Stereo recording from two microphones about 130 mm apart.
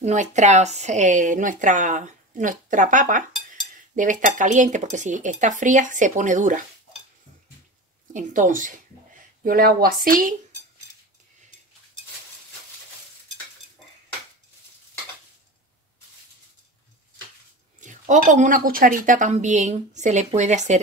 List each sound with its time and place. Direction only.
0.0 s speech: 65° right (ahead or behind)
8.1 s speech: 85° right
17.7 s speech: 70° right (ahead or behind)